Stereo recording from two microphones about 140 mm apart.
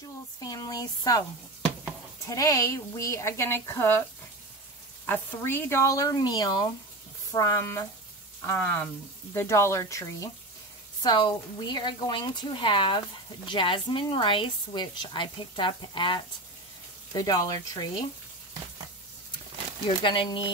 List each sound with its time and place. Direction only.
0.4 s a woman's voice: 25° left (ahead or behind)
2.2 s a woman's voice: 25° left (ahead or behind)
5.0 s a woman's voice: 15° left (ahead or behind)
11.0 s a woman's voice: 35° left (ahead or behind)
20.0 s speech: 35° left (ahead or behind)